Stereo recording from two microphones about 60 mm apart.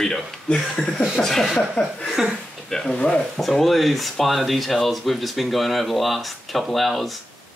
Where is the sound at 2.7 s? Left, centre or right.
Centre.